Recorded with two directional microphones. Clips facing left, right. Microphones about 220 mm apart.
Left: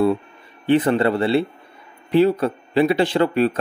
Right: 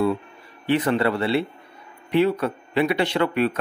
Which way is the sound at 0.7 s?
30° left (ahead or behind).